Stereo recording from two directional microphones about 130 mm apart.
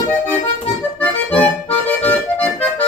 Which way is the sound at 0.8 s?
15° left (ahead or behind).